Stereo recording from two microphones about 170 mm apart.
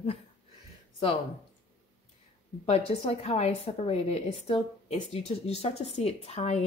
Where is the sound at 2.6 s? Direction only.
40° left (ahead or behind).